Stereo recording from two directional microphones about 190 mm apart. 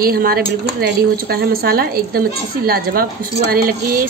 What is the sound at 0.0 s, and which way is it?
Speech, 50° right (ahead or behind).